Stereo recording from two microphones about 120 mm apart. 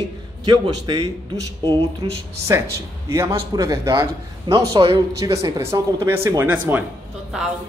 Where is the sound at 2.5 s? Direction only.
30° right (ahead or behind).